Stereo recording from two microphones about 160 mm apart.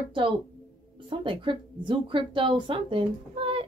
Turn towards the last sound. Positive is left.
turn(degrees=-35)  # may be behind; listen again after turning